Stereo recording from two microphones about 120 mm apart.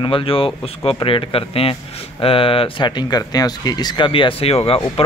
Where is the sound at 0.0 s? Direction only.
45° left (ahead or behind).